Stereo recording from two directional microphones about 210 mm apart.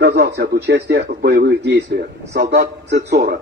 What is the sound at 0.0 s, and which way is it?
Speech, 50° right (ahead or behind).